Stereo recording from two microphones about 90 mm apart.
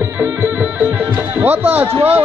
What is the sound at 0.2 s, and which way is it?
Music, 20° right (ahead or behind).